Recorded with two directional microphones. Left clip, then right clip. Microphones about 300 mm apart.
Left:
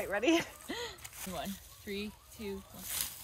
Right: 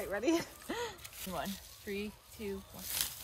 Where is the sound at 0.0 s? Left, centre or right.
Centre.